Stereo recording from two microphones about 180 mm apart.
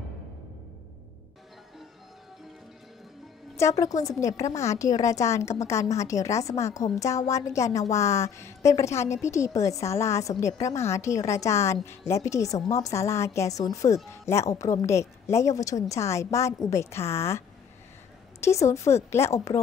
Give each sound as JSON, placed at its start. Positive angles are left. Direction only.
{"t": 3.5, "sound": "a woman's voice", "side_deg": 15}
{"t": 18.4, "sound": "a woman's voice", "side_deg": 15}